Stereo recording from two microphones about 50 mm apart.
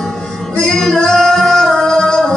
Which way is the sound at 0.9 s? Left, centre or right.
Centre.